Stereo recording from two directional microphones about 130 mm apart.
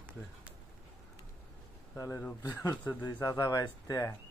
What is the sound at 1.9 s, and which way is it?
Speech, 20° left (ahead or behind).